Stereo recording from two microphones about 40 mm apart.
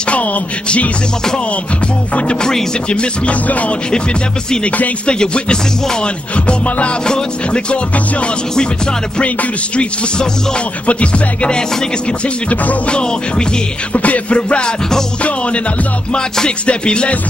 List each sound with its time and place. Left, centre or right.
0.1 s music: left
2.9 s music: left
5.2 s music: left
6.4 s music: left
9.2 s music: left
10.9 s music: left
13.9 s music: left
16.1 s music: left